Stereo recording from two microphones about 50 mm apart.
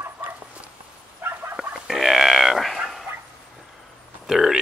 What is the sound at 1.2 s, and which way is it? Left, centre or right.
Fowl, right.